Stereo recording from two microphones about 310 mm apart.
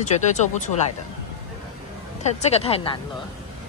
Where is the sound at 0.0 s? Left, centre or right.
Left.